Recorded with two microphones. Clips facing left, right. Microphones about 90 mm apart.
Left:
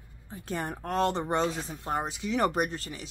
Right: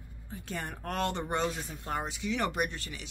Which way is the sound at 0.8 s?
25° left (ahead or behind).